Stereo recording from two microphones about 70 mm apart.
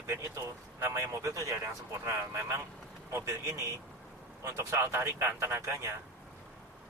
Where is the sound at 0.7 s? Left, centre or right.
Right.